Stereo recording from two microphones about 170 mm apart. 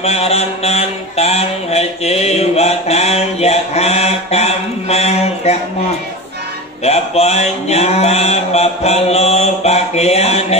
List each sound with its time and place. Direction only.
0.0 s mantra: 35° left (ahead or behind)
6.8 s mantra: 40° left (ahead or behind)